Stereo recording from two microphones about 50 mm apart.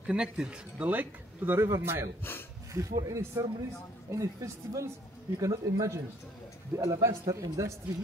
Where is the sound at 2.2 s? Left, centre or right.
Left.